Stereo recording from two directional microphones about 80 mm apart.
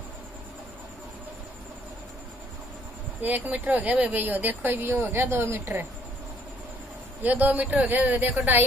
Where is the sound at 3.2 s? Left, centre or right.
Right.